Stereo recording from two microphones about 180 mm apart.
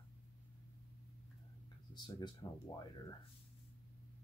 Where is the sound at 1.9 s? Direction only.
25° left (ahead or behind).